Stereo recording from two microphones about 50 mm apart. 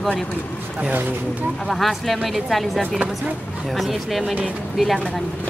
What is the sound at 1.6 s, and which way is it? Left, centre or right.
Speech, centre.